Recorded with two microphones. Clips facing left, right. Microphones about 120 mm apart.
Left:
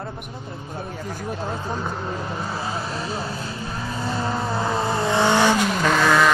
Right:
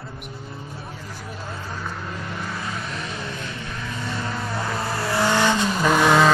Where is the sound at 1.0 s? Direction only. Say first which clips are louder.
Left 9 dB; 35° left (ahead or behind).